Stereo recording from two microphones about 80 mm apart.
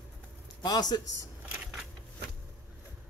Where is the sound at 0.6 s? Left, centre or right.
Left.